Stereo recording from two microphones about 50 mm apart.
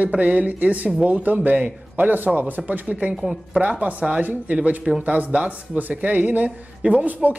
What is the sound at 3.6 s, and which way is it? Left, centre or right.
Speech, right.